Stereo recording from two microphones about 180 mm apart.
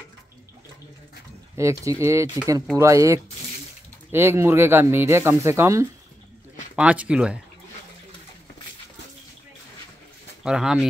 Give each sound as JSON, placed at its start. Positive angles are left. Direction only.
{"t": 1.6, "sound": "speech", "side_deg": -15}
{"t": 10.4, "sound": "speech", "side_deg": -5}